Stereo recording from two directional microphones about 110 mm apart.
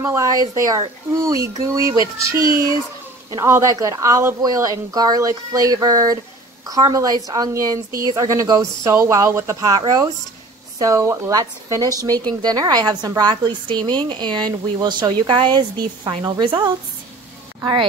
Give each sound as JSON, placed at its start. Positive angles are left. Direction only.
{"t": 0.0, "sound": "speech", "side_deg": -30}